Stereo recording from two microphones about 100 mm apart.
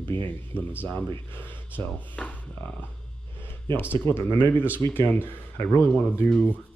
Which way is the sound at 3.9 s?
25° left (ahead or behind).